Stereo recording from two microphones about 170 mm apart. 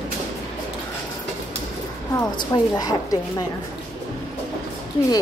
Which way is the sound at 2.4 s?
20° left (ahead or behind).